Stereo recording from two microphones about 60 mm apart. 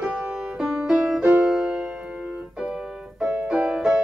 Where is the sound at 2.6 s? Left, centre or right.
Centre.